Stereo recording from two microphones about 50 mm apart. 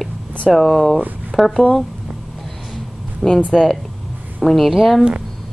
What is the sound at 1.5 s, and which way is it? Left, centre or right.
Speech, centre.